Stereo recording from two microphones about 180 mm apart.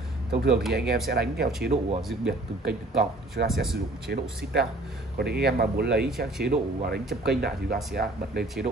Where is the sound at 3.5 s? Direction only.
Centre (ahead or behind).